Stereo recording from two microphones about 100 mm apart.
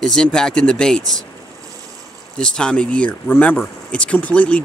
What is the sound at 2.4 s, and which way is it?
Speech, 10° left (ahead or behind).